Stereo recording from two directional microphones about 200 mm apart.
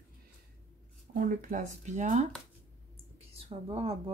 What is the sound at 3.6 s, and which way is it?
Speech, 30° right (ahead or behind).